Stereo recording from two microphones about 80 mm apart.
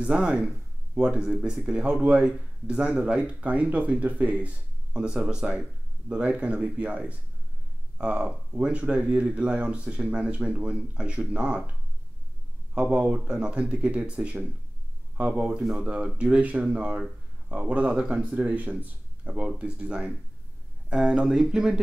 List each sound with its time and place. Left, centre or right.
0.0 s speech: centre
12.7 s speech: centre